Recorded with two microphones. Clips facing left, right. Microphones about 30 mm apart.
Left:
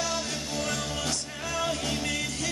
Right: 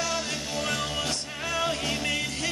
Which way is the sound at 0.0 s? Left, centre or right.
Centre.